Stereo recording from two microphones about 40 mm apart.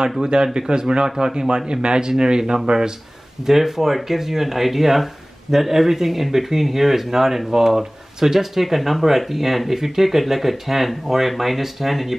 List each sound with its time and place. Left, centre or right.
0.2 s speech: centre
3.4 s speech: centre